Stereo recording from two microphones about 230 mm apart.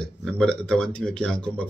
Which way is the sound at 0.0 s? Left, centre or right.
Centre.